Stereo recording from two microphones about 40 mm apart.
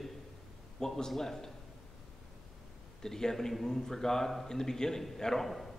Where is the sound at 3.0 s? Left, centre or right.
Centre.